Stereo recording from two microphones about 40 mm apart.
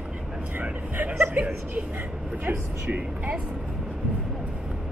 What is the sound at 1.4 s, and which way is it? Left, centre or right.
Speech, right.